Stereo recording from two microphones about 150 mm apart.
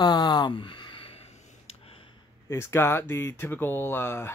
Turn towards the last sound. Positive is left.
turn(degrees=15)  # may be behind; listen again after turning